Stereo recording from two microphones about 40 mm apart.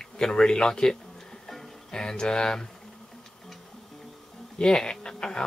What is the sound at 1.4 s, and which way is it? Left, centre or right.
Music, centre.